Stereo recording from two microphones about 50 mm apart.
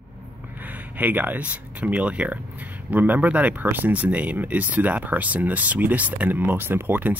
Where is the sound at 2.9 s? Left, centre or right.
Right.